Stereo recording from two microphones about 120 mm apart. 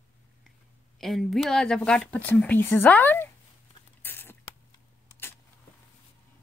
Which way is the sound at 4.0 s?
20° left (ahead or behind).